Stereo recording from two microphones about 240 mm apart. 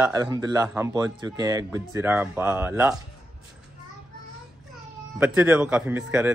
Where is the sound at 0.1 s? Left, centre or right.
Centre.